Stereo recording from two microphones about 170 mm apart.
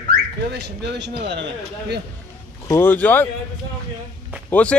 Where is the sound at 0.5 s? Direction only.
85° right.